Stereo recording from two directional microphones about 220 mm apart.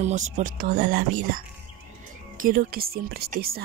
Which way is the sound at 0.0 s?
30° right (ahead or behind).